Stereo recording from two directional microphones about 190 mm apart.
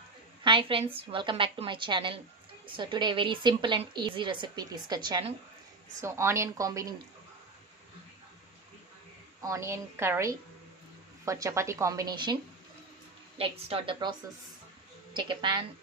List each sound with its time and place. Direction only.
0.4 s a woman's voice: 25° right (ahead or behind)
9.4 s a woman's voice: 15° right (ahead or behind)
13.4 s a woman's voice: 30° right (ahead or behind)
15.1 s a woman's voice: 25° right (ahead or behind)